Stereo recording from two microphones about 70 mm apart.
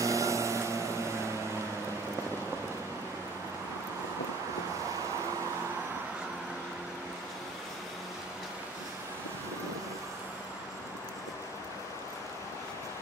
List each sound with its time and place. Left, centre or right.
0.0 s vehicle: right